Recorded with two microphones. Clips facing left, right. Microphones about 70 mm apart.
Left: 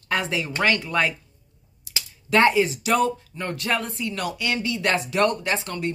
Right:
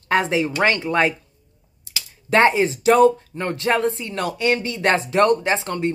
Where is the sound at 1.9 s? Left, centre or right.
Right.